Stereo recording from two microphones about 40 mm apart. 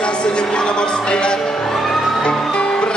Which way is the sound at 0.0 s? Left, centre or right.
Left.